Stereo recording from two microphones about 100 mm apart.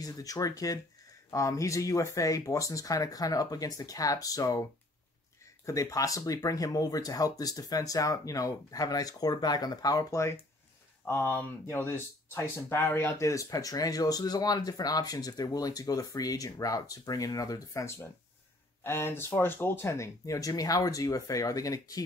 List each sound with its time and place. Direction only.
0.0 s speech: 35° left (ahead or behind)
5.7 s speech: 35° left (ahead or behind)